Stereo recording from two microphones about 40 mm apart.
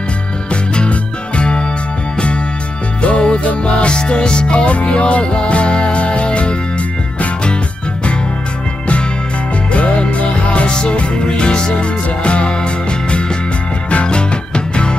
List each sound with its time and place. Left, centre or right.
0.5 s music: left
3.0 s music: left
9.7 s music: left
13.8 s music: left